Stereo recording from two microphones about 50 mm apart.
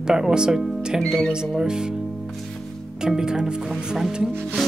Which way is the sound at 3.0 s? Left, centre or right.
Centre.